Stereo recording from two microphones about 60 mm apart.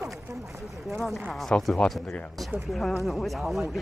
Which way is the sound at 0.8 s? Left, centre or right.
Centre.